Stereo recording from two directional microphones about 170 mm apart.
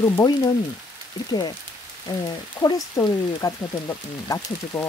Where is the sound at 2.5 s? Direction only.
20° left (ahead or behind).